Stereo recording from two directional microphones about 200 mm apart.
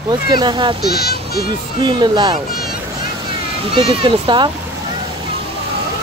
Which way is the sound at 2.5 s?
50° left (ahead or behind).